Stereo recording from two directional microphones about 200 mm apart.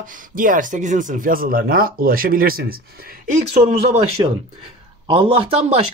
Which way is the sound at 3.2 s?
35° right (ahead or behind).